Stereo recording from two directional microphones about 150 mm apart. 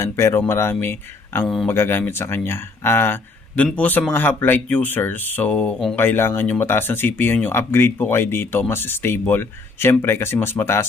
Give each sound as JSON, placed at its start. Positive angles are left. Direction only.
{"t": 0.0, "sound": "speech", "side_deg": 15}